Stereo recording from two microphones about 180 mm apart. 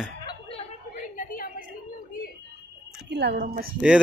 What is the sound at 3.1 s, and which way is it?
Speech, 65° right (ahead or behind).